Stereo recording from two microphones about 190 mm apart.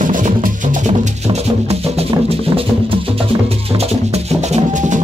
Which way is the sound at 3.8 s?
35° right (ahead or behind).